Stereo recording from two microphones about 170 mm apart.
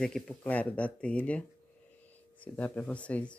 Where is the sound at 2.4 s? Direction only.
10° left (ahead or behind).